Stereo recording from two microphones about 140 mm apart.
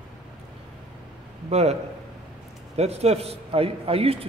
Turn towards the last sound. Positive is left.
turn(degrees=-45)  # may be behind; listen again after turning